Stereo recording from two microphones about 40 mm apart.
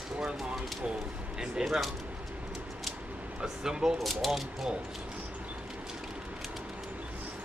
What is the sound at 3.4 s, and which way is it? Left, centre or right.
Speech, centre.